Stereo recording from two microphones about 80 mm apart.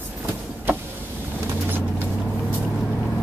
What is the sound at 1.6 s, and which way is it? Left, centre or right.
Vehicle, right.